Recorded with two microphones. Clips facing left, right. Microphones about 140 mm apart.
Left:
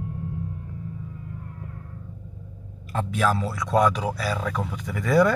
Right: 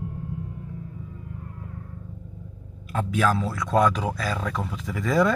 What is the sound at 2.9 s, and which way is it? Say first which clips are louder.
Speech: right 1 dB; centre (ahead or behind).